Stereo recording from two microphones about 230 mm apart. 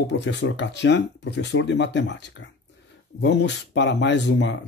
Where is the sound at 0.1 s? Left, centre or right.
Left.